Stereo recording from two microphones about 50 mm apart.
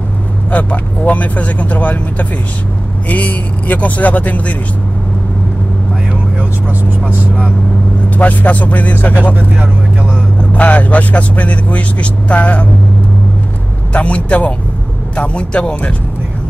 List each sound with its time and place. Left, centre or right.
0.5 s speech: left
8.2 s speech: left
10.5 s speech: left
13.9 s speech: left